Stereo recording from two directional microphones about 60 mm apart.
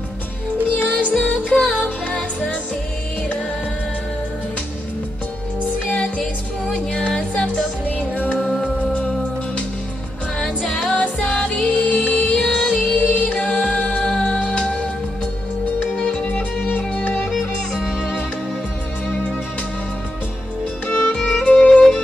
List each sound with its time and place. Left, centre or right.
0.7 s music: left
5.9 s music: centre
8.4 s music: centre
10.4 s music: centre
10.9 s music: centre
16.0 s music: centre
17.7 s music: centre
20.8 s music: left